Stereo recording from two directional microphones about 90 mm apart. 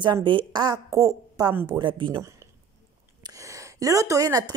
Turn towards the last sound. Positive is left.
turn(degrees=-40)  # may be behind; listen again after turning